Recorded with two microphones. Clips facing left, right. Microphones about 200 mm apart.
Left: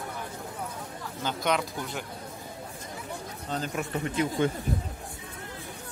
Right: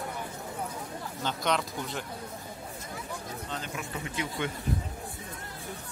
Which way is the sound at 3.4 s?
40° left (ahead or behind).